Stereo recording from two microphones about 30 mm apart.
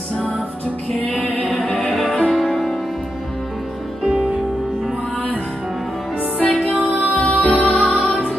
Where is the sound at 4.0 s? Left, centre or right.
Centre.